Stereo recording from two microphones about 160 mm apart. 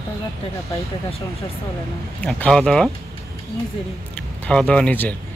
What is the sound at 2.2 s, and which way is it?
Speech, 5° left (ahead or behind).